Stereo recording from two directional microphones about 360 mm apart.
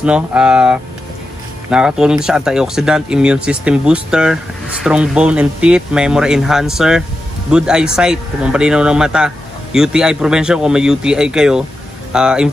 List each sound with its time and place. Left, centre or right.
0.0 s speech: centre